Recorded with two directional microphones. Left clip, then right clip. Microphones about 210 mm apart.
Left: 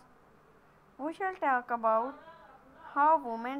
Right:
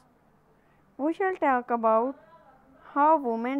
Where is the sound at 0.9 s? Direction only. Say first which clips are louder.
Right 8 dB; 45° right (ahead or behind).